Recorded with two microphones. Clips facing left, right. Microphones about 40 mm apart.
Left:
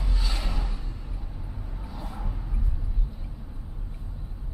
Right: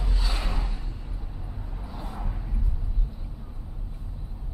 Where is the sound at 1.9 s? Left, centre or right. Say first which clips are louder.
Right 1 dB; centre.